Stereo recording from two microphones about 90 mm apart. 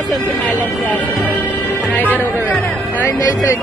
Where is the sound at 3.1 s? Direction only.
40° left (ahead or behind).